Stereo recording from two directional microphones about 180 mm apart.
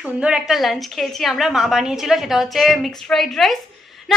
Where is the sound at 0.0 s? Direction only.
5° right (ahead or behind).